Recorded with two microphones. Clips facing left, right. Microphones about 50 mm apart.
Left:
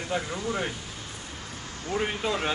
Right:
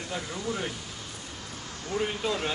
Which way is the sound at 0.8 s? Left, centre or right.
Centre.